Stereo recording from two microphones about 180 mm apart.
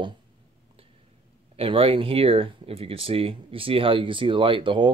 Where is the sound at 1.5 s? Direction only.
30° right (ahead or behind).